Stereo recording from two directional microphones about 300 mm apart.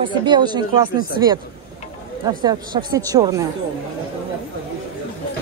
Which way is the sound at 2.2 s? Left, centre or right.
Centre.